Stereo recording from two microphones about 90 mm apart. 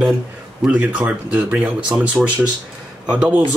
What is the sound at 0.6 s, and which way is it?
Speech, 15° right (ahead or behind).